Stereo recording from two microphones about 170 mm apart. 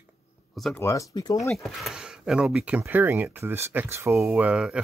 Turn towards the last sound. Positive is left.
turn(degrees=-5)  # may be behind; listen again after turning